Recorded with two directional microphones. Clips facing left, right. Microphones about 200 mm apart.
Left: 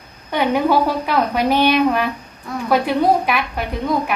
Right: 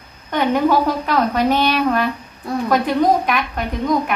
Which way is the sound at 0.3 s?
10° left (ahead or behind).